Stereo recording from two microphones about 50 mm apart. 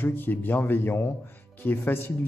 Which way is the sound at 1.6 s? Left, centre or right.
Left.